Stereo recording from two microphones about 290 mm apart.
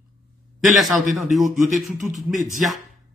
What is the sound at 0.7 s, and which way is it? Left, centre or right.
A man's voice, centre.